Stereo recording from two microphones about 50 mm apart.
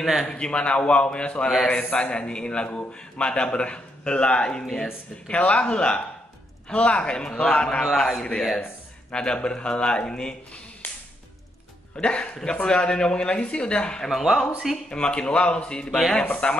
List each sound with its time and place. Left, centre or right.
0.0 s a man's voice: centre
0.3 s a man's voice: centre
9.1 s a man's voice: centre
12.0 s a man's voice: left
14.0 s a man's voice: centre
14.9 s a man's voice: centre